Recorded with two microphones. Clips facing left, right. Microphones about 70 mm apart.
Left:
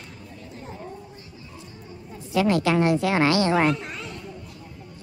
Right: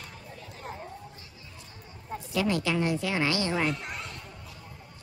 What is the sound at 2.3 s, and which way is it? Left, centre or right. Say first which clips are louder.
A woman's voice: left 7 dB; left.